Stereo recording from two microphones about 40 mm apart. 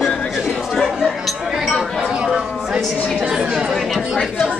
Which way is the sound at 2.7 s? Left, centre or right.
Right.